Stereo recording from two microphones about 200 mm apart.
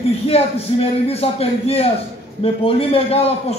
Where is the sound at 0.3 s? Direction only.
30° left (ahead or behind).